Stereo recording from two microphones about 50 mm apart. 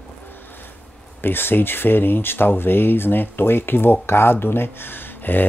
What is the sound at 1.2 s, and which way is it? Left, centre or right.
Speech, left.